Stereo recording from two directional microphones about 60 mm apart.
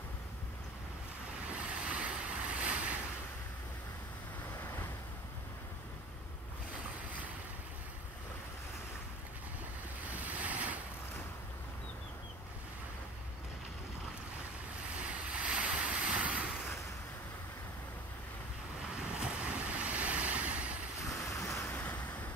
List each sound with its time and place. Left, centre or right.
1.9 s vehicle: right
2.6 s ocean: right
10.1 s waves: right
15.0 s waves: right
18.9 s waves: centre
21.0 s waves: left
21.5 s vehicle: left